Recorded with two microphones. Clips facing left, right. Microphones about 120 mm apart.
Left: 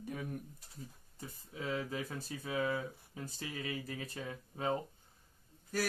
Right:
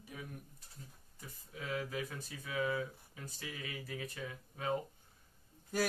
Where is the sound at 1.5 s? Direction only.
30° left (ahead or behind).